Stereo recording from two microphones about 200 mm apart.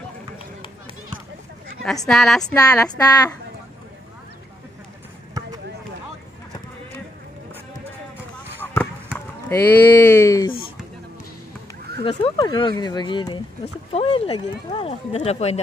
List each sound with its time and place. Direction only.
2.0 s a woman's voice: centre (ahead or behind)
2.4 s speech: 15° left (ahead or behind)
5.4 s basketball bounce: 15° right (ahead or behind)
9.5 s speech: 15° left (ahead or behind)
12.0 s speech: 25° left (ahead or behind)